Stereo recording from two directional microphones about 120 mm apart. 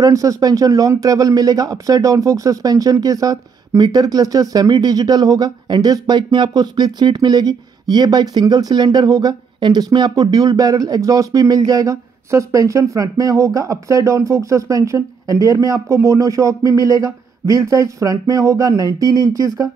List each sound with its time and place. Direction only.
0.0 s speech: 30° right (ahead or behind)